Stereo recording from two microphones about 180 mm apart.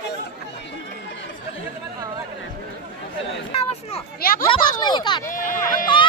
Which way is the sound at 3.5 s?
35° left (ahead or behind).